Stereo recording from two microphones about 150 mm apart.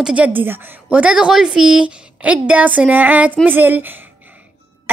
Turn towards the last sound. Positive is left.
turn(degrees=-10)  # may be behind; listen again after turning